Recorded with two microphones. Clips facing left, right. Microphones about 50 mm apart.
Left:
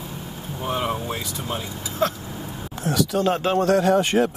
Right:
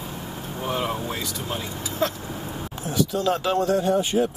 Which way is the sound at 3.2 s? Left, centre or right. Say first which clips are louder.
Left 2 dB; left.